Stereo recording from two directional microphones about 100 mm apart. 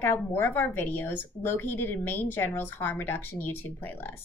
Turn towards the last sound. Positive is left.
turn(degrees=20)  # may be behind; listen again after turning